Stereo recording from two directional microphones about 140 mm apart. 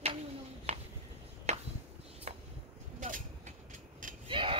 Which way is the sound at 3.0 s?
65° right (ahead or behind).